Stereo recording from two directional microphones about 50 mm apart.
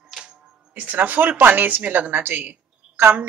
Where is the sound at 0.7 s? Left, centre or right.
Right.